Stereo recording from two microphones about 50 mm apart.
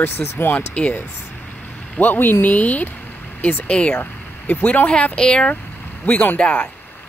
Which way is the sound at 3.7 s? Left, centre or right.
Left.